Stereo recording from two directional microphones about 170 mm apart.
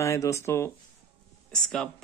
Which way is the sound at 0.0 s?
15° left (ahead or behind).